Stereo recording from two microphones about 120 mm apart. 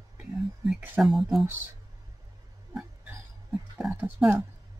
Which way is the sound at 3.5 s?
5° right (ahead or behind).